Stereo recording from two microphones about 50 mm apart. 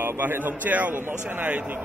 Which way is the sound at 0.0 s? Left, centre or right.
Right.